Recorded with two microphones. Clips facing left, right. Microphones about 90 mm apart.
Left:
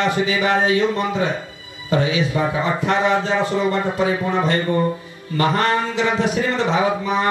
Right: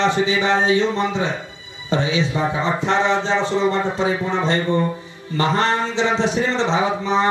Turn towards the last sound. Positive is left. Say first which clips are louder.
# even
turn(degrees=-25)  # may be behind; listen again after turning